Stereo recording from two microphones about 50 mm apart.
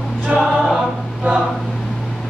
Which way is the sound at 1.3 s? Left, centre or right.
Right.